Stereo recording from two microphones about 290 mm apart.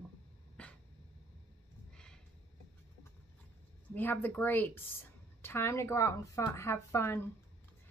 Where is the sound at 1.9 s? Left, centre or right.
Centre.